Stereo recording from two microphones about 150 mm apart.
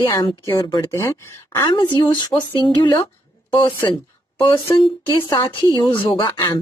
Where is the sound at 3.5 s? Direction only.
35° left (ahead or behind).